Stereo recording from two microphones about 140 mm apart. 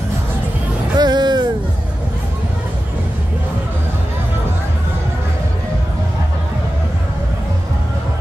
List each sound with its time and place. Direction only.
0.9 s music: 30° right (ahead or behind)